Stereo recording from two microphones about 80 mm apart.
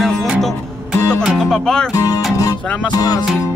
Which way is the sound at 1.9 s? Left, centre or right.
Left.